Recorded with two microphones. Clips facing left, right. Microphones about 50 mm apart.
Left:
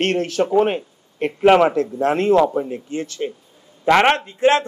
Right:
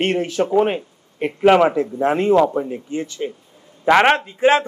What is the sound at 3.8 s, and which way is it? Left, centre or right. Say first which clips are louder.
Speech: right 1 dB; centre.